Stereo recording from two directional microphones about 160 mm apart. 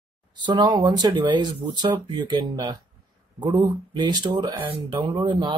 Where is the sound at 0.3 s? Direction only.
30° right (ahead or behind).